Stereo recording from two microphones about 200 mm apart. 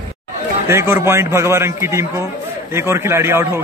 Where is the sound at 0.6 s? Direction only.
10° right (ahead or behind).